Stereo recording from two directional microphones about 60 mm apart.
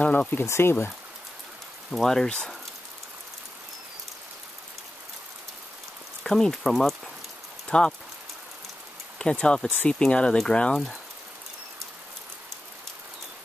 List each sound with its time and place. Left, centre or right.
0.0 s speech: left
0.5 s speech: left
1.9 s speech: centre
6.2 s speech: centre
7.6 s speech: centre
9.2 s speech: centre